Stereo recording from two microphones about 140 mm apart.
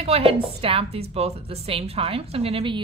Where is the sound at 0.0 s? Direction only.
45° right (ahead or behind).